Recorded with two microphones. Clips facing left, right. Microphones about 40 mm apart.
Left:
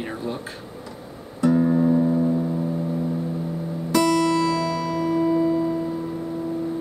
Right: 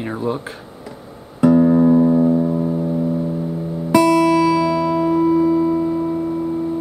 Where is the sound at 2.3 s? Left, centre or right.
Right.